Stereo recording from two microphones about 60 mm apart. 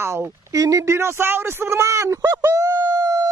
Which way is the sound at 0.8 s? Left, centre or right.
Right.